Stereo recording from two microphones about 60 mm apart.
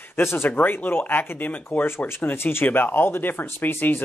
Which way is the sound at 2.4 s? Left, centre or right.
Left.